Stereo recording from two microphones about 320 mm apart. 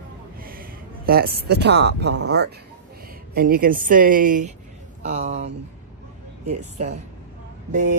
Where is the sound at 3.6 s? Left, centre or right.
Right.